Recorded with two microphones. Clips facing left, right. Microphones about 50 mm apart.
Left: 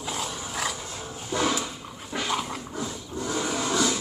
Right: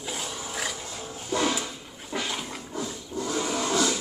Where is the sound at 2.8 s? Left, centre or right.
Centre.